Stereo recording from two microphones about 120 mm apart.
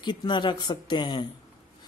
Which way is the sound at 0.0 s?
40° left (ahead or behind).